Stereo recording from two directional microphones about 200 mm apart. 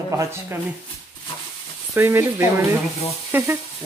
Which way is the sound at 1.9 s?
10° right (ahead or behind).